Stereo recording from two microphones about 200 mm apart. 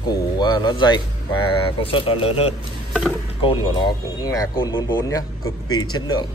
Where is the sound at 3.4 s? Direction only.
25° left (ahead or behind).